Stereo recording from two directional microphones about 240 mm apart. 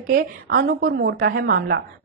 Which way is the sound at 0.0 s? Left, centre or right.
Right.